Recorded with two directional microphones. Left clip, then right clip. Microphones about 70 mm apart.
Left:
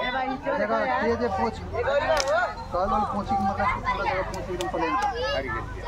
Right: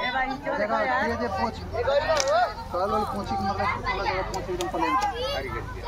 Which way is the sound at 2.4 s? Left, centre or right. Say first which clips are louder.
Left 1 dB; centre.